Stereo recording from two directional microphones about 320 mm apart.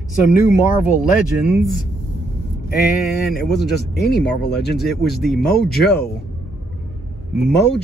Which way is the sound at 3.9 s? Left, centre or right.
Left.